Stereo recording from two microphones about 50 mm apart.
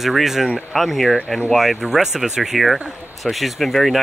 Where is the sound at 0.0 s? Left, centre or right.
Centre.